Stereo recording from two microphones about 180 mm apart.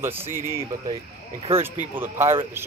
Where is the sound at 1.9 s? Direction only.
15° right (ahead or behind).